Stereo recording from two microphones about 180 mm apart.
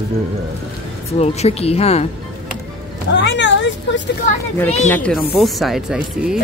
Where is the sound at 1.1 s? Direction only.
35° left (ahead or behind).